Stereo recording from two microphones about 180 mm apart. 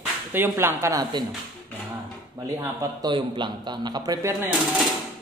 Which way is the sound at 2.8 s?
20° right (ahead or behind).